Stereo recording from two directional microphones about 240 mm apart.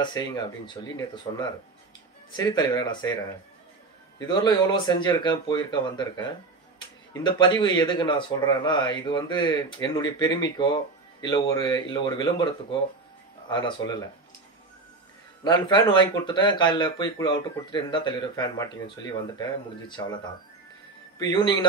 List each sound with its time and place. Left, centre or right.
0.0 s speech: centre
4.2 s speech: centre
13.5 s speech: centre
15.4 s speech: centre
21.2 s speech: centre